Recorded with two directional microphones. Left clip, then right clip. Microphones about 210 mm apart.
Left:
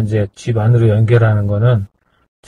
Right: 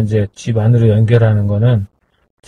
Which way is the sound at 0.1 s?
15° right (ahead or behind).